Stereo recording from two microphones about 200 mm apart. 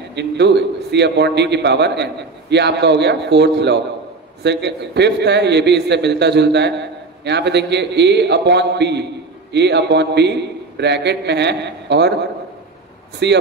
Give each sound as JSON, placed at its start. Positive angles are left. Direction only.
{"t": 0.1, "sound": "a man's voice", "side_deg": -60}
{"t": 13.2, "sound": "a man's voice", "side_deg": -60}